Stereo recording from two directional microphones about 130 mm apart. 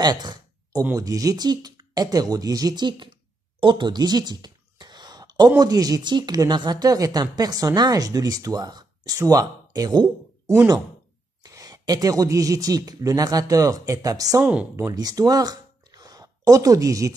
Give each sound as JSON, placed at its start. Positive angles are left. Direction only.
{"t": 0.0, "sound": "a sound", "side_deg": -35}
{"t": 0.9, "sound": "speech", "side_deg": -25}
{"t": 14.4, "sound": "speech", "side_deg": -10}
{"t": 14.8, "sound": "speech", "side_deg": -25}